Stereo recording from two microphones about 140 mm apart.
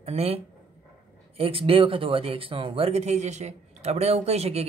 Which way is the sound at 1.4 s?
40° right (ahead or behind).